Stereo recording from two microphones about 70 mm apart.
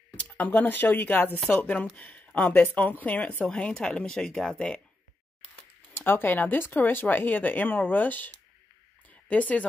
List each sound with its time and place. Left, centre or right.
0.2 s a woman's voice: left
5.9 s speech: left